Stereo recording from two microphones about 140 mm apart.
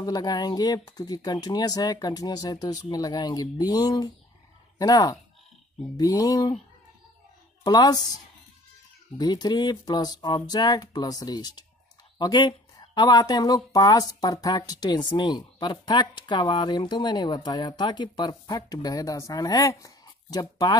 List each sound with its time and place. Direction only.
0.0 s speech: 30° left (ahead or behind)
7.6 s speech: 30° left (ahead or behind)
9.2 s speech: 30° left (ahead or behind)